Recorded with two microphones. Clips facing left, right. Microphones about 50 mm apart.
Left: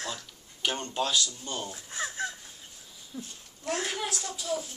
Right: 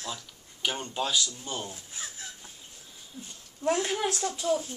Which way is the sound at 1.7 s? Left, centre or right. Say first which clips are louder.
Left 6 dB; left.